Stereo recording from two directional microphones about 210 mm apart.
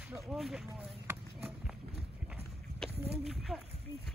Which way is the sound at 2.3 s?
5° left (ahead or behind).